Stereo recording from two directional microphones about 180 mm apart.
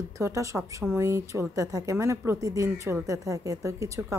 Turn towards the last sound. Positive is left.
turn(degrees=-15)  # may be behind; listen again after turning